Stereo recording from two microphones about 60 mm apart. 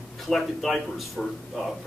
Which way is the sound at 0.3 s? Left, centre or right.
Centre.